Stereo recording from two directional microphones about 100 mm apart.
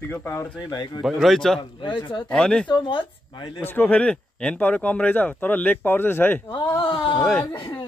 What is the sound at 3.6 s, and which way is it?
Speech, 20° left (ahead or behind).